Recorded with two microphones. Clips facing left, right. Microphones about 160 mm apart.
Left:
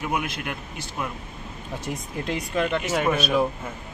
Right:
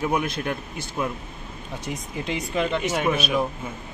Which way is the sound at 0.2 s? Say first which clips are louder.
Right 4 dB; 30° right (ahead or behind).